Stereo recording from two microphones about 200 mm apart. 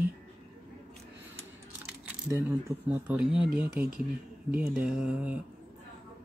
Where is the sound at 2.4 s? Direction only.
10° right (ahead or behind).